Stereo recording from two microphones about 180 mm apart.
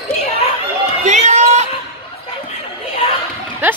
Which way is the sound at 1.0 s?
40° right (ahead or behind).